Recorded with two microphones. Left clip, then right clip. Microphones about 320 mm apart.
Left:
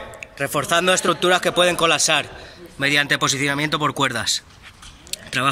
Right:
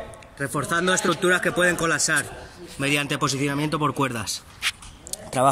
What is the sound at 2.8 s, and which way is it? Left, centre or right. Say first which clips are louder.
Speech: left 5 dB; centre.